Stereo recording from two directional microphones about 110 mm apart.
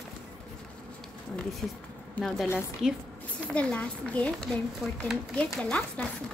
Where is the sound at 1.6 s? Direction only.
5° left (ahead or behind).